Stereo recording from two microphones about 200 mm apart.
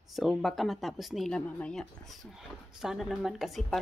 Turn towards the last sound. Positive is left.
turn(degrees=0)  # may be behind; listen again after turning